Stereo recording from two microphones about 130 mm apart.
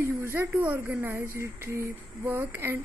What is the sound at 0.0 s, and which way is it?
Speech, 15° right (ahead or behind).